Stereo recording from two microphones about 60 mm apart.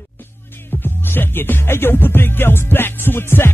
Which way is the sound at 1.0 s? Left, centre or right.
Left.